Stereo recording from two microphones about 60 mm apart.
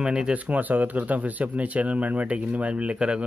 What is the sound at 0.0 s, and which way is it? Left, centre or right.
Speech, centre.